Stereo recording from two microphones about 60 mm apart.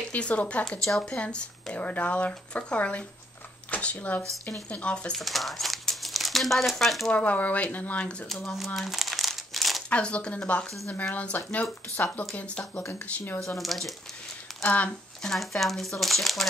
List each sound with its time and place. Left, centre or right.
0.1 s speech: left
5.1 s speech: centre
7.1 s speech: left
8.3 s speech: centre
8.5 s crumpling: centre
9.8 s speech: centre
12.0 s speech: left
12.4 s speech: centre
13.6 s speech: centre
14.6 s speech: left
15.3 s speech: centre